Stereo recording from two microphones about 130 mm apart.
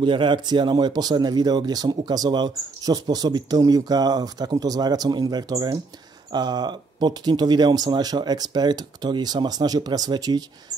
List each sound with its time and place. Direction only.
0.0 s speech: 40° right (ahead or behind)